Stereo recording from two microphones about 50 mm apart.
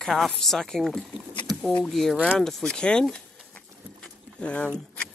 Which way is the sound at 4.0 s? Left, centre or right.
Left.